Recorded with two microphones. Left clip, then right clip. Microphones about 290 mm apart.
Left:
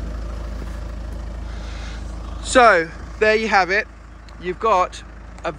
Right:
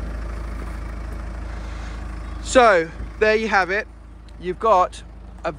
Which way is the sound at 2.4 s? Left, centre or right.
Centre.